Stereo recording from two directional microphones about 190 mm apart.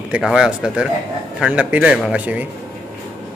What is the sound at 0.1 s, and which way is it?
A man's voice, 5° right (ahead or behind).